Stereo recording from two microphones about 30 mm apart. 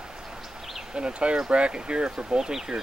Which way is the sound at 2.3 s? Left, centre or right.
Centre.